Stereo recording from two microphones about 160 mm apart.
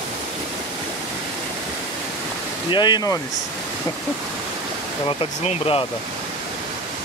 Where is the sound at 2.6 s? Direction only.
30° left (ahead or behind).